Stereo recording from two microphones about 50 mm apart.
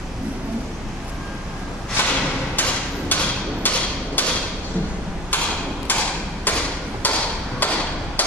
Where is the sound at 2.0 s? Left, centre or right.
Left.